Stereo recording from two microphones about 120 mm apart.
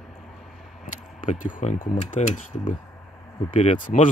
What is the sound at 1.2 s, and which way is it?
Speech, 80° left.